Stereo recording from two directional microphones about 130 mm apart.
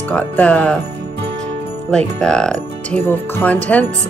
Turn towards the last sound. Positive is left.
turn(degrees=15)  # may be behind; listen again after turning